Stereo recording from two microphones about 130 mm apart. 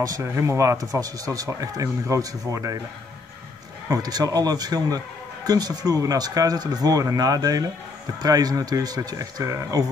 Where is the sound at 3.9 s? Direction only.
30° right (ahead or behind).